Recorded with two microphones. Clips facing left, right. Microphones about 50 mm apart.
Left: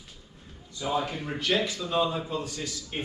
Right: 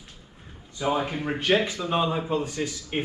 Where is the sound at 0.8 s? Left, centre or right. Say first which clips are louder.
Right 3 dB; right.